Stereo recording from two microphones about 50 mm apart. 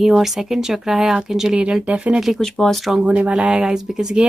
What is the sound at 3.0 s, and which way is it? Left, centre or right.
Speech, right.